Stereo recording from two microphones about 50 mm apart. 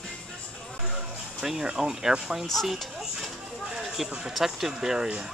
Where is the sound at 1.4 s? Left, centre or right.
Centre.